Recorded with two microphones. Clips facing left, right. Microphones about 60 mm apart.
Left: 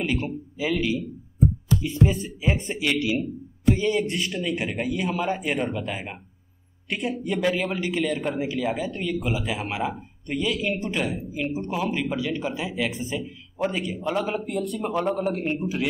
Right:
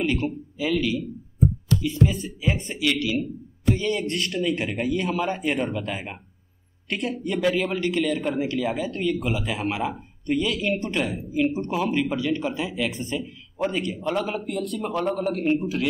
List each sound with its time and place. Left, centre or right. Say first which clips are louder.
0.0 s speech: right 2 dB; centre
3.8 s speech: left 1 dB; centre